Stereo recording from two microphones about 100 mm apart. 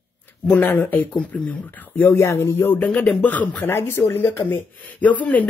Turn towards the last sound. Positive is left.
turn(degrees=15)  # may be behind; listen again after turning